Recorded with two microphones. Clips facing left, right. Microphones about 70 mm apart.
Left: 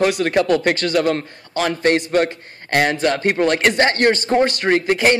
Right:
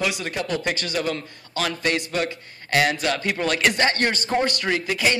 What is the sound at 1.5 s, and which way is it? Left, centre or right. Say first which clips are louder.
Speech: left 7 dB; left.